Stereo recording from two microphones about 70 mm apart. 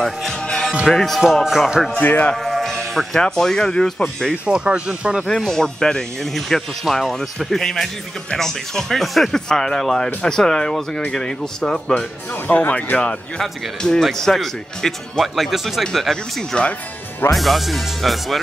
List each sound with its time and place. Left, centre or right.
0.0 s music: centre
0.9 s speech: centre
2.0 s speech: left
2.3 s speech: centre
4.5 s speech: centre
5.2 s speech: centre
12.3 s speech: left; by 18.4 s centre